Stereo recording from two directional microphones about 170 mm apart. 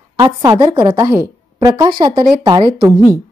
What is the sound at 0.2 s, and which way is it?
A woman's voice, 20° right (ahead or behind).